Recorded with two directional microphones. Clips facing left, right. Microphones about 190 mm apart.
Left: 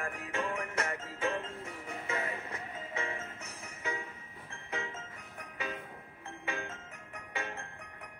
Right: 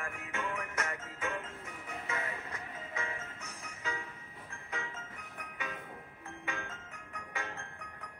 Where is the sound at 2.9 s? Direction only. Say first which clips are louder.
Left 3 dB; 25° left (ahead or behind).